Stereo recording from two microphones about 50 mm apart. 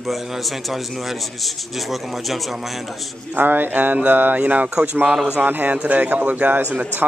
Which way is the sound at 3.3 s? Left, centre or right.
Right.